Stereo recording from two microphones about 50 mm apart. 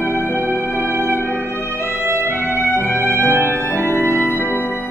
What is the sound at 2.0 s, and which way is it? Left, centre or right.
Music, right.